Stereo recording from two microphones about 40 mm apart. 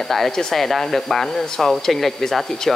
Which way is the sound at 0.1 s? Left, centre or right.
Centre.